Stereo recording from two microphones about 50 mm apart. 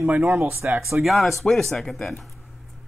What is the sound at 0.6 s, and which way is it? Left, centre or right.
Speech, right.